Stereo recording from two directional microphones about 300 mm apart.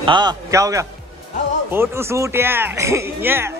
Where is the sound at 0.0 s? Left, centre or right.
Centre.